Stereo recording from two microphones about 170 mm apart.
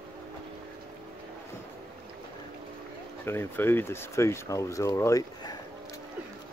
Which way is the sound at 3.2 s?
15° left (ahead or behind).